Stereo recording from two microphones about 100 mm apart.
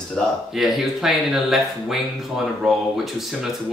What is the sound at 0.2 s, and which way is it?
Speech, 5° left (ahead or behind).